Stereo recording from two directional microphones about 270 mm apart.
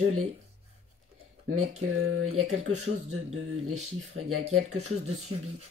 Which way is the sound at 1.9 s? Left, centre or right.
Right.